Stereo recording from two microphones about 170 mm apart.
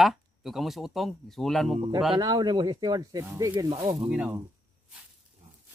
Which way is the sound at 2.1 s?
20° right (ahead or behind).